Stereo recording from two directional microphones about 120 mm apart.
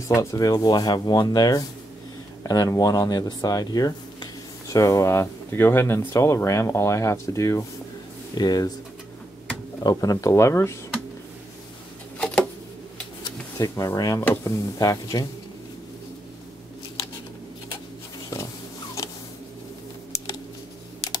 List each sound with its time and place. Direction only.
0.1 s speech: 25° left (ahead or behind)
9.8 s speech: 30° left (ahead or behind)
12.2 s a sound: 10° left (ahead or behind)
13.2 s speech: 30° left (ahead or behind)